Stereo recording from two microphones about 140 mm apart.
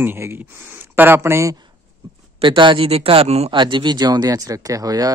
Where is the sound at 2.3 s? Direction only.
35° right (ahead or behind).